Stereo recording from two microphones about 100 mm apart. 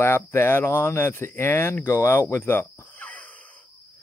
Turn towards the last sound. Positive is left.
turn(degrees=15)  # may be behind; listen again after turning